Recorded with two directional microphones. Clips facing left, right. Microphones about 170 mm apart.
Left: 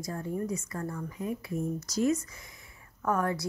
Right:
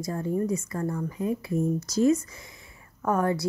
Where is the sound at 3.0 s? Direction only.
25° right (ahead or behind).